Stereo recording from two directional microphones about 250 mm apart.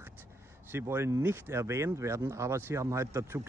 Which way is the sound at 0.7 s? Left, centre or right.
Centre.